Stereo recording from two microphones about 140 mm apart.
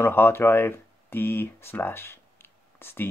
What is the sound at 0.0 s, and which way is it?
Speech, 15° left (ahead or behind).